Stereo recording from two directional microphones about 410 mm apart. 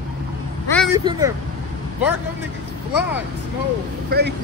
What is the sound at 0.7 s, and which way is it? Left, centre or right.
Speech, centre.